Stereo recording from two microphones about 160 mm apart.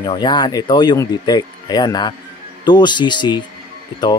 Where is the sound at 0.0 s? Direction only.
25° left (ahead or behind).